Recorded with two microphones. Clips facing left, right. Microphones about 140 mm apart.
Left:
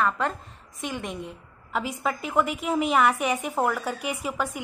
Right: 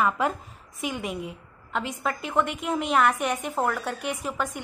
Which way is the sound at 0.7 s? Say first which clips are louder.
Right 2 dB; 5° right (ahead or behind).